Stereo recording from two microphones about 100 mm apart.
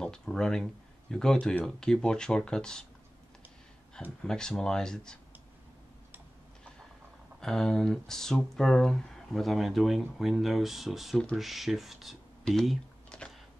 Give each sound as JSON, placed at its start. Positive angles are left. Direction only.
{"t": 0.0, "sound": "speech", "side_deg": 5}
{"t": 4.2, "sound": "speech", "side_deg": 5}
{"t": 7.3, "sound": "speech", "side_deg": 5}